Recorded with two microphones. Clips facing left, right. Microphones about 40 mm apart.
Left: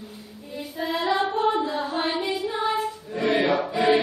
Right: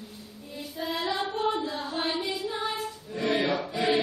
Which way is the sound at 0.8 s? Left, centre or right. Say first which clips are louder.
Left 6 dB; centre.